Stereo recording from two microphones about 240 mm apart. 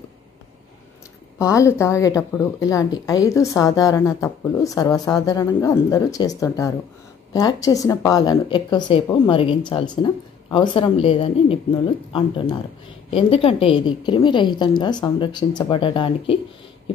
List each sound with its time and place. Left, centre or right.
1.4 s a woman's voice: centre